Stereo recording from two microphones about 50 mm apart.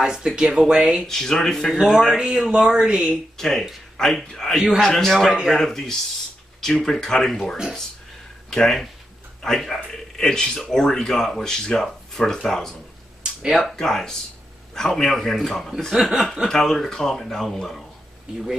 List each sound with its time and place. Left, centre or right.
0.0 s speech: centre
0.7 s speech: centre
1.0 s speech: centre
1.8 s a man's voice: centre
3.3 s speech: centre
4.6 s a man's voice: centre
4.8 s a man's voice: centre
13.2 s a sound: centre
13.6 s a man's voice: centre
15.9 s speech: centre
16.4 s speech: centre